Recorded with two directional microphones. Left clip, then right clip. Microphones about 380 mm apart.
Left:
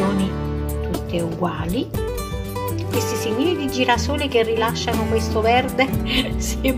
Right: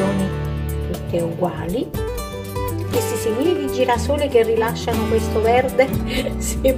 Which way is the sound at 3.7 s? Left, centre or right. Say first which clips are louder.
Even; centre.